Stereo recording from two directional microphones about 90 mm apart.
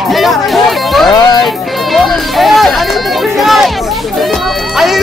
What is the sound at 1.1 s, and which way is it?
Music, 40° left (ahead or behind).